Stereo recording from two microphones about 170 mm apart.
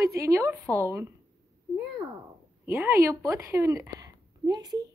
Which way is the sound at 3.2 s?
15° right (ahead or behind).